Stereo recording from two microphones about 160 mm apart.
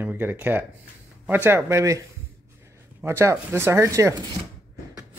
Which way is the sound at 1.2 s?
15° right (ahead or behind).